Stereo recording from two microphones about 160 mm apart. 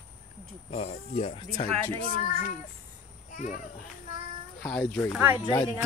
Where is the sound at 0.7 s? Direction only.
40° left (ahead or behind).